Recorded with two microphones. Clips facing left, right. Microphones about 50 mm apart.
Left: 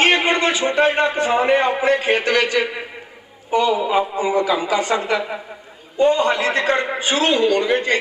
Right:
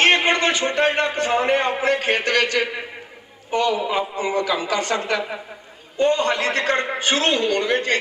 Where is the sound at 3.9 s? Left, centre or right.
Centre.